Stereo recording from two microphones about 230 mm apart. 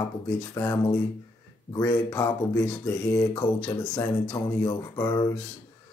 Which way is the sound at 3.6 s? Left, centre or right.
Centre.